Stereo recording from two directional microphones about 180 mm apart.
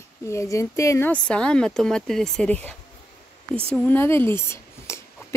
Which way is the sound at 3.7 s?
10° left (ahead or behind).